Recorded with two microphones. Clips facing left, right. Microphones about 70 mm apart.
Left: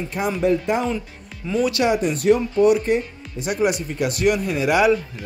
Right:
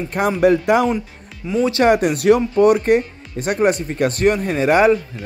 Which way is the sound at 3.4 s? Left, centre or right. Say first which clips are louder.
Right 4 dB; right.